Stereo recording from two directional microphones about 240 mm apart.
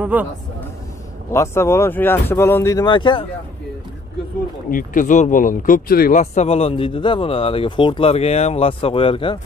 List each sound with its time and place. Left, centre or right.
0.0 s speech: centre
1.3 s speech: centre
4.6 s speech: left